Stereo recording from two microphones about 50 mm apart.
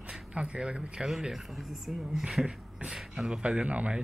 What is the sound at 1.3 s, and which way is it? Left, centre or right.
Speech, centre.